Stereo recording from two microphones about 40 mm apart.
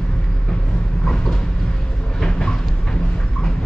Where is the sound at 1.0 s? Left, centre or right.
Centre.